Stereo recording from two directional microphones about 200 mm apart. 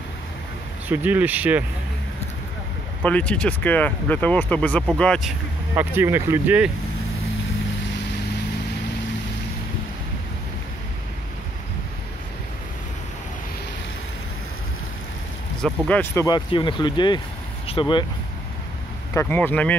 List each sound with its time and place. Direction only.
0.8 s speech: 10° right (ahead or behind)
3.0 s speech: 5° left (ahead or behind)
5.8 s speech: 10° right (ahead or behind)
15.6 s speech: 10° left (ahead or behind)
16.3 s speech: 25° left (ahead or behind)
19.1 s speech: 10° left (ahead or behind)